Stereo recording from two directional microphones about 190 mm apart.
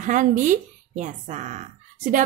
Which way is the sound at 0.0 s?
45° right (ahead or behind).